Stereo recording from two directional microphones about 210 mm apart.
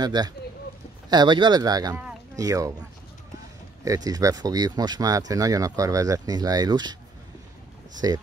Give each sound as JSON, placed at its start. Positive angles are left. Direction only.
{"t": 0.0, "sound": "speech", "side_deg": -20}
{"t": 3.8, "sound": "speech", "side_deg": -15}
{"t": 8.0, "sound": "speech", "side_deg": -15}